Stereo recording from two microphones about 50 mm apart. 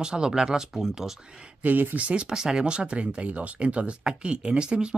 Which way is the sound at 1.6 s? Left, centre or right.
Right.